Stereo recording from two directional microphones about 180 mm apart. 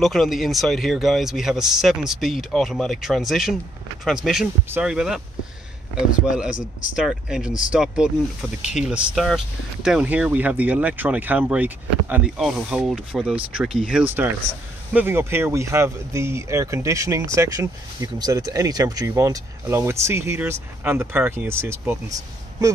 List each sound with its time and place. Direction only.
0.0 s speech: centre (ahead or behind); by 22.7 s 15° right (ahead or behind)